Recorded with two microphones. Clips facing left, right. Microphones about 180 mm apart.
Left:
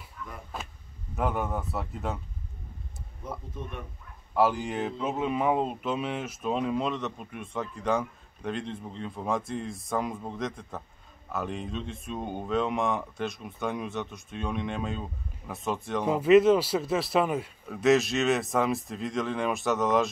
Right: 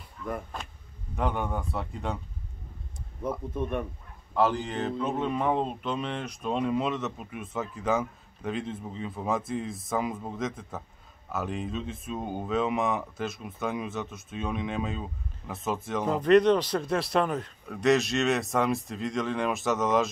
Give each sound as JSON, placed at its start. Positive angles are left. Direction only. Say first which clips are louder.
{"t": 0.2, "sound": "a sound", "louder": "right 8 dB", "side_deg": -30}
{"t": 1.1, "sound": "speech", "louder": "even", "side_deg": 5}
{"t": 3.6, "sound": "speech", "louder": "right 8 dB", "side_deg": -55}
{"t": 4.3, "sound": "speech", "louder": "left 1 dB", "side_deg": 10}